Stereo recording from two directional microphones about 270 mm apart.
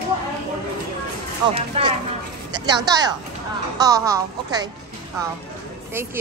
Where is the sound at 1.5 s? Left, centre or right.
Right.